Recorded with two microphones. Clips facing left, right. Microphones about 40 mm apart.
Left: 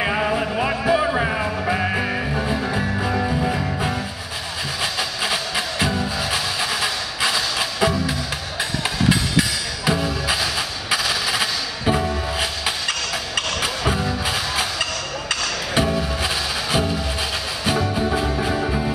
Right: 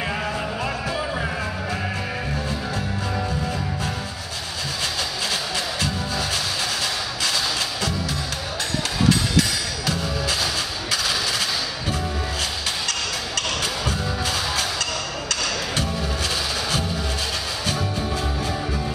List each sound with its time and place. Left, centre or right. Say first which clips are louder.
0.0 s music: left 5 dB; left
5.3 s music: left 2 dB; centre
17.6 s music: left 7 dB; centre